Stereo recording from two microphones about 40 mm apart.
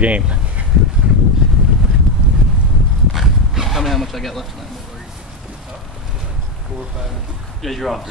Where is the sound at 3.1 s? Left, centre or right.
Centre.